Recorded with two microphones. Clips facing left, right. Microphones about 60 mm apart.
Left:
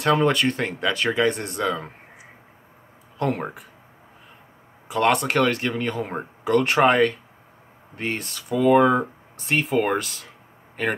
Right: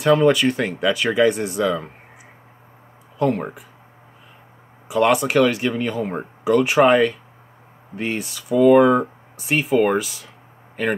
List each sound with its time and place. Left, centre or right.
0.0 s speech: centre
3.2 s speech: centre
4.9 s speech: centre